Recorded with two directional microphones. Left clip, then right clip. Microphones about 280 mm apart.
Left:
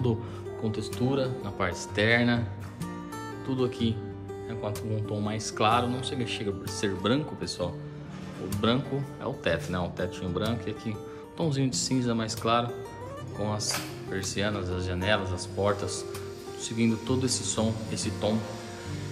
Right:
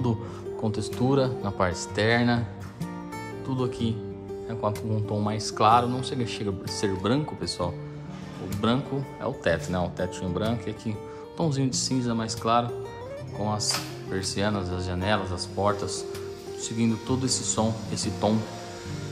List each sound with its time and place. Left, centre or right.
0.0 s speech: centre
3.4 s speech: centre